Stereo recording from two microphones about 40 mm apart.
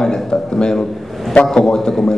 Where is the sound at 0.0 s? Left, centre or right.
Centre.